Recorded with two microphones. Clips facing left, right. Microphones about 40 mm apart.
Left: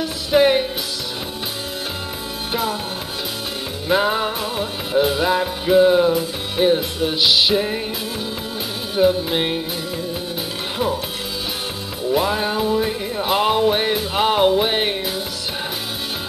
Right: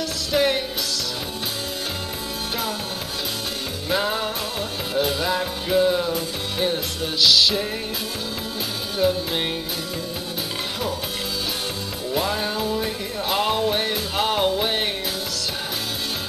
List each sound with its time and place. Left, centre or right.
0.0 s music: centre
3.9 s music: centre
8.9 s music: centre
12.1 s music: centre